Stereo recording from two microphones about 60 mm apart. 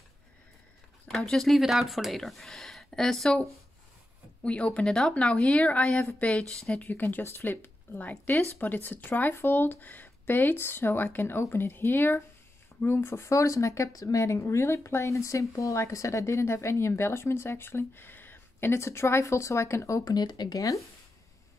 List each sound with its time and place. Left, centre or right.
1.0 s speech: centre
1.5 s speech: centre
4.4 s speech: centre
4.8 s speech: centre
5.1 s speech: left
6.9 s speech: left
20.1 s speech: left